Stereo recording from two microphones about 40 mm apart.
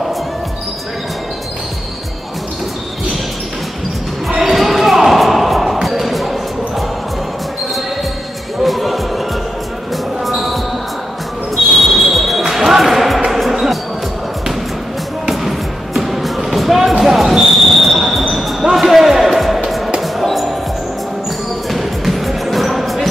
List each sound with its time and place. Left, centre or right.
4.3 s music: centre
8.6 s basketball bounce: centre
10.2 s basketball bounce: centre
13.3 s music: centre
15.2 s music: centre
17.0 s basketball bounce: centre
21.6 s music: centre